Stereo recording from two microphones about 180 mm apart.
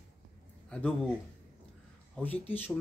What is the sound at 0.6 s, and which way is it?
Speech, 5° left (ahead or behind).